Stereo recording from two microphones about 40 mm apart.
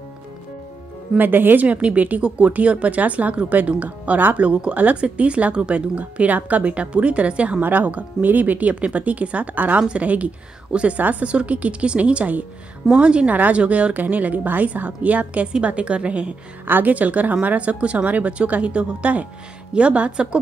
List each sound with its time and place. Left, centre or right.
1.1 s speech: right
1.7 s speech: right
2.2 s a woman's voice: right
4.5 s a woman's voice: right
5.9 s speech: right
7.6 s speech: right
11.0 s speech: right
11.2 s a woman's voice: right
16.6 s speech: right
16.9 s a woman's voice: right